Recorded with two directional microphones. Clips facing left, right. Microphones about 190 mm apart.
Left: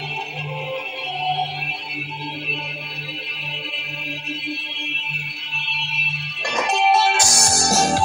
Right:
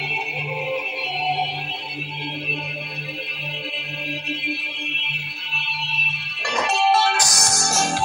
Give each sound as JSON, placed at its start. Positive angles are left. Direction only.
{"t": 6.4, "sound": "music", "side_deg": 20}